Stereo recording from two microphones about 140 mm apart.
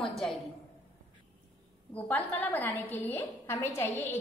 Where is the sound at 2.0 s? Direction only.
10° left (ahead or behind).